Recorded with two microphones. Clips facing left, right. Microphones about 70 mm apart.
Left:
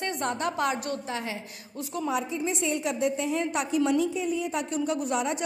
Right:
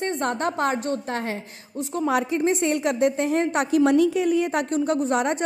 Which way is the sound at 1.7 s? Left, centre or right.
Right.